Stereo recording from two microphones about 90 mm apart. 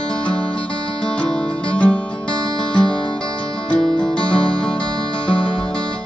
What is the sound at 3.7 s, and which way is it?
Music, 10° left (ahead or behind).